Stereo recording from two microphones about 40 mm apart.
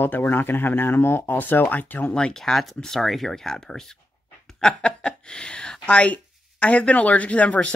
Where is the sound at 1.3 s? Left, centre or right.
Left.